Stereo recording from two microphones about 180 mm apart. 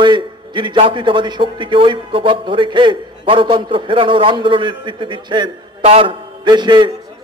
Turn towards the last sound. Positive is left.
turn(degrees=-25)  # may be behind; listen again after turning